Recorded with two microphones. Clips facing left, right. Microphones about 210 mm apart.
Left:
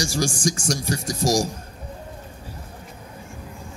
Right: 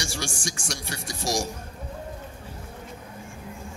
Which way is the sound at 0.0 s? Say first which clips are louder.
Left 9 dB; 40° left (ahead or behind).